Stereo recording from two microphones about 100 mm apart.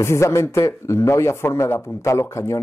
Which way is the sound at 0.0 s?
30° left (ahead or behind).